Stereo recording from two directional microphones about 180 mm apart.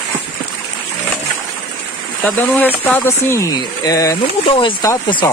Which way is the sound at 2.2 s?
10° left (ahead or behind).